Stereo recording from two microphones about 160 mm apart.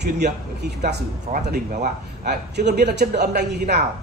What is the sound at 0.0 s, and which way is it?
Speech, 90° right.